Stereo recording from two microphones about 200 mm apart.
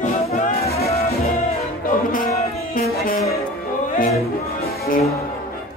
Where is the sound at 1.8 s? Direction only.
40° left (ahead or behind).